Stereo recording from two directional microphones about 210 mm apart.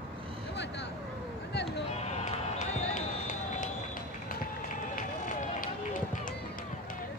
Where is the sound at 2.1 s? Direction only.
35° left (ahead or behind).